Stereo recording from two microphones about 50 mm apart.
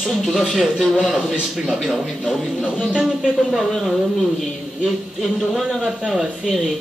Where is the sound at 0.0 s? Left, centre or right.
Centre.